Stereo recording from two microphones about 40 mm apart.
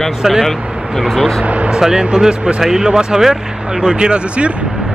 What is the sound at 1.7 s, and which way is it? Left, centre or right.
Speech, centre.